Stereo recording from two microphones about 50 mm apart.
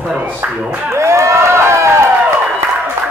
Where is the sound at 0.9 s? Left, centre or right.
Right.